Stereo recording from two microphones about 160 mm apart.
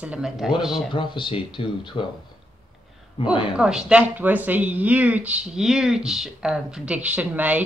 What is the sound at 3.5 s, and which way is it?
Speech, 5° right (ahead or behind).